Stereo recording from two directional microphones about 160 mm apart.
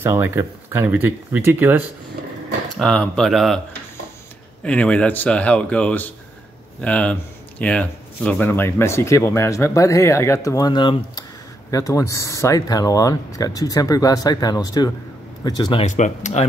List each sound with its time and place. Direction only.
0.0 s speech: 15° right (ahead or behind)
2.8 s speech: 5° left (ahead or behind)
4.6 s speech: 10° left (ahead or behind); by 11.2 s 30° left (ahead or behind)
11.7 s speech: 20° left (ahead or behind)
15.8 s speech: 50° left (ahead or behind)